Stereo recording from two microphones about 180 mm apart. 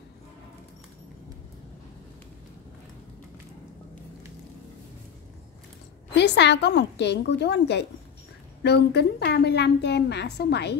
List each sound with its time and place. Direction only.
6.1 s a woman's voice: 75° left (ahead or behind)